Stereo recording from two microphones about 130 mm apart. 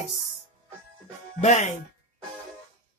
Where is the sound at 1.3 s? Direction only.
60° left (ahead or behind).